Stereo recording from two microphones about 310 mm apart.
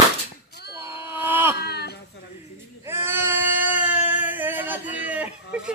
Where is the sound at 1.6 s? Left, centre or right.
Left.